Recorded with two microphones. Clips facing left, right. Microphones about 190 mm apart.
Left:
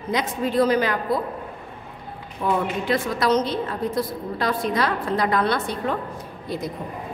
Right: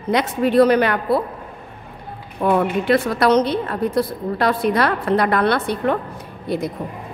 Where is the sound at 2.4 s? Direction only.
65° right (ahead or behind).